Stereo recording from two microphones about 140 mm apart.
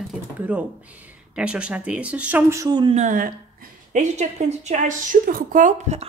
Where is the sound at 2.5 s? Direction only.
30° right (ahead or behind).